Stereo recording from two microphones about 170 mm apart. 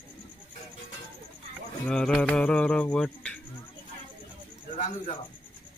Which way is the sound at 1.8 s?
5° left (ahead or behind).